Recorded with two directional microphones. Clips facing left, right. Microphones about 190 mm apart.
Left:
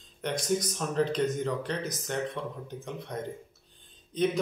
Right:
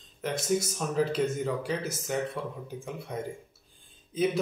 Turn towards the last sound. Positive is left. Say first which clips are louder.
# even
turn(degrees=-5)  # may be behind; listen again after turning